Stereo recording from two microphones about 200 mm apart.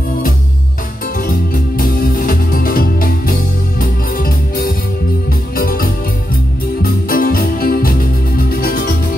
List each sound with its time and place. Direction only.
1.2 s music: 45° left (ahead or behind)